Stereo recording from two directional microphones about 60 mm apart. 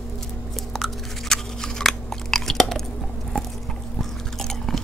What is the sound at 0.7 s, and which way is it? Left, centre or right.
Chewing, centre.